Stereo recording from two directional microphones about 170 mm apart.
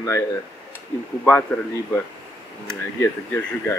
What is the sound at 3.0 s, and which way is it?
Speech, 15° left (ahead or behind).